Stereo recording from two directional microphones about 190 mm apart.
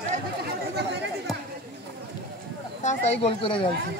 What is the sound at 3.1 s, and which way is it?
Speech, 30° left (ahead or behind).